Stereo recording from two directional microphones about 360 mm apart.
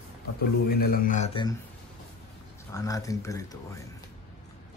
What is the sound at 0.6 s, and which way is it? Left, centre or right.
Speech, left.